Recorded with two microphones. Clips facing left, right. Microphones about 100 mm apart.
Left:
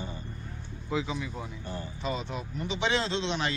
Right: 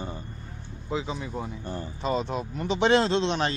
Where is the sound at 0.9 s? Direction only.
30° right (ahead or behind).